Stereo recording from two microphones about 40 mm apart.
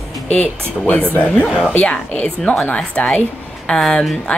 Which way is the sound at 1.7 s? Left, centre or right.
Left.